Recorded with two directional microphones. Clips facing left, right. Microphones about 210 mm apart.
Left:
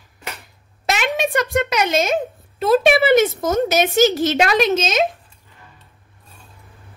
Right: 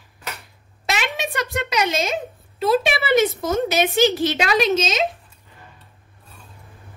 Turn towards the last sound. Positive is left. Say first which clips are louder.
# left 2 dB
turn(degrees=50)  # may be behind; listen again after turning